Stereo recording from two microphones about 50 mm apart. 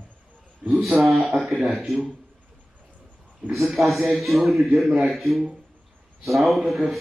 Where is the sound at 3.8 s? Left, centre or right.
Centre.